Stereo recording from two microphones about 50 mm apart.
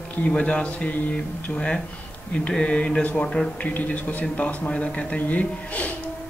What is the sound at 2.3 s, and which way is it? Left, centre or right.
Speech, left.